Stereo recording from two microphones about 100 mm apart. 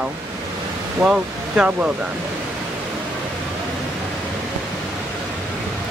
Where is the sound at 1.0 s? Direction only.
10° right (ahead or behind).